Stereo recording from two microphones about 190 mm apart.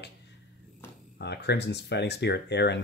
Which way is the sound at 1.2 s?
60° left (ahead or behind).